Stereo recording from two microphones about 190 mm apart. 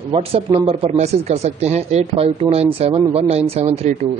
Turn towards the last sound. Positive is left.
turn(degrees=-35)  # may be behind; listen again after turning